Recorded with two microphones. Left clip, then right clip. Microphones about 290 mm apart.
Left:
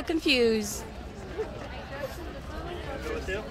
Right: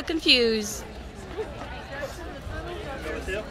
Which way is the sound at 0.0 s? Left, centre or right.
Centre.